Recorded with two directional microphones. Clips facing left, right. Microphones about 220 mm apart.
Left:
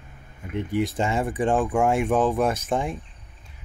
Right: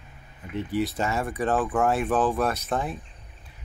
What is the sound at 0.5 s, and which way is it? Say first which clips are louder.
Speech: left 2 dB; 15° left (ahead or behind).